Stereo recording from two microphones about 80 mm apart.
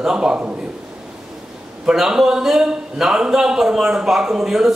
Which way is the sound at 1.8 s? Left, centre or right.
Centre.